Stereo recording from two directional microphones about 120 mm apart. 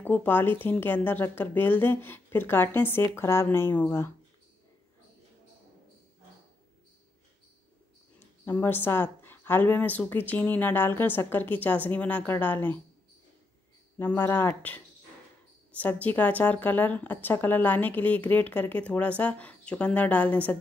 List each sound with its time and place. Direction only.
0.0 s speech: 15° left (ahead or behind)
8.2 s speech: 20° left (ahead or behind)
13.9 s speech: 20° left (ahead or behind)